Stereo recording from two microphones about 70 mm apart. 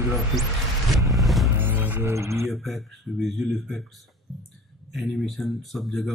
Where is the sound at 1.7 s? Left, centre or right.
Right.